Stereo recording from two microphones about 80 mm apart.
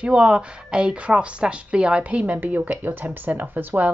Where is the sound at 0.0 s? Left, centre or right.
Centre.